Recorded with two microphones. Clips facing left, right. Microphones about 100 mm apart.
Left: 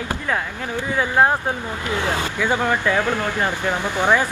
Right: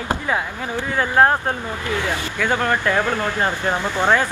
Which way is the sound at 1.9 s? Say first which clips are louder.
Left 1 dB; 20° left (ahead or behind).